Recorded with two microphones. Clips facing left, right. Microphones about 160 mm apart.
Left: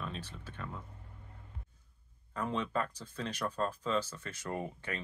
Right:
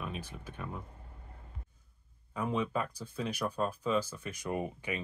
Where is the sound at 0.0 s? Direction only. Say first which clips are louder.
Right 2 dB; 10° right (ahead or behind).